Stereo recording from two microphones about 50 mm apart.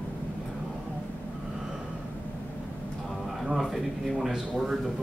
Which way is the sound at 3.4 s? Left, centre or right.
Centre.